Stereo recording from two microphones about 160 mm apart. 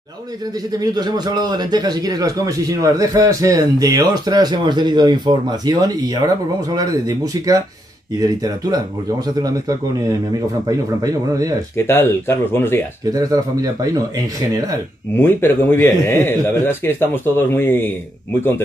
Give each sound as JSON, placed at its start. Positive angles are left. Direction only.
{"t": 0.7, "sound": "speech", "side_deg": -25}
{"t": 11.7, "sound": "a man's voice", "side_deg": 15}
{"t": 13.1, "sound": "speech", "side_deg": -25}
{"t": 15.1, "sound": "a man's voice", "side_deg": 15}